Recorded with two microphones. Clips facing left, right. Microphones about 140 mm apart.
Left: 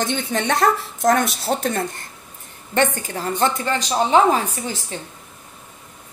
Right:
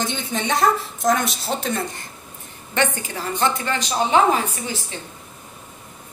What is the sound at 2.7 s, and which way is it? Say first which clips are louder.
Speech: left 3 dB; 45° left (ahead or behind).